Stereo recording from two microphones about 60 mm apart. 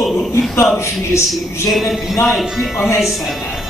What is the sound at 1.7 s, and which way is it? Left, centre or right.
A man's voice, centre.